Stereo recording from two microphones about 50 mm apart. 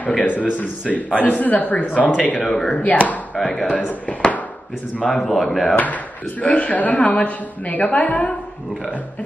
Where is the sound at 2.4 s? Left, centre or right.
Centre.